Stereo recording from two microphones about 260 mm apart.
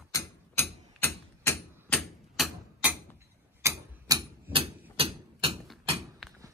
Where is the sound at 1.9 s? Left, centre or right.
Centre.